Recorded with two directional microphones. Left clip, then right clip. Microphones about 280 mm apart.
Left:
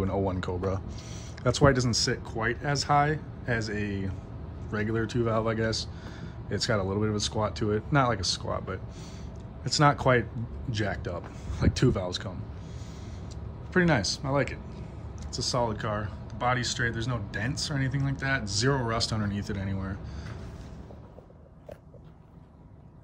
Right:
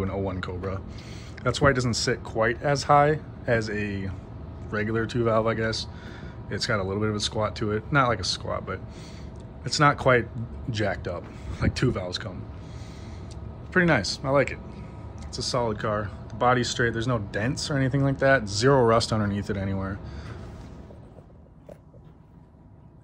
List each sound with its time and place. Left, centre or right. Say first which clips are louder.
0.0 s speech: even; centre
13.7 s speech: right 3 dB; centre